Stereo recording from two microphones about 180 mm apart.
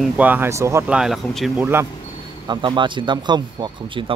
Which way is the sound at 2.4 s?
25° right (ahead or behind).